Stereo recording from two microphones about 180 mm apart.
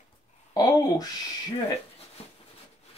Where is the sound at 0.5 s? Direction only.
20° left (ahead or behind).